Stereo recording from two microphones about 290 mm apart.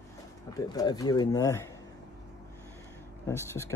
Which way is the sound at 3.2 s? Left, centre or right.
Centre.